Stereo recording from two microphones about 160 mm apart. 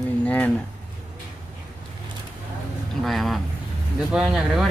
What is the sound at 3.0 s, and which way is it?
Speech, centre (ahead or behind).